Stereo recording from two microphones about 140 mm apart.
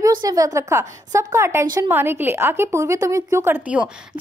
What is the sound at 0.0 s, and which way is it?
Speech, 25° right (ahead or behind).